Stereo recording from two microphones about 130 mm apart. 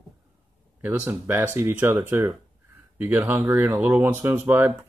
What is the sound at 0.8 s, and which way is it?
Speech, 15° right (ahead or behind).